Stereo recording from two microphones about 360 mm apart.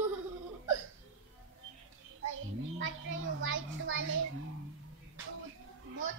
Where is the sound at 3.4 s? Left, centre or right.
Right.